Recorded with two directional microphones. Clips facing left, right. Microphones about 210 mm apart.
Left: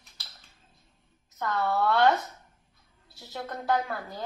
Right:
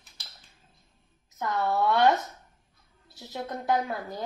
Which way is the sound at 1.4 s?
15° right (ahead or behind).